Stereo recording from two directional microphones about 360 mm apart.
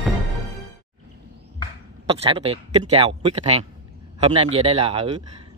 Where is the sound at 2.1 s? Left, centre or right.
Centre.